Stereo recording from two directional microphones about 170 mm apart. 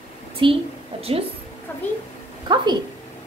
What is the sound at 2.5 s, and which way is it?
Speech, 30° right (ahead or behind).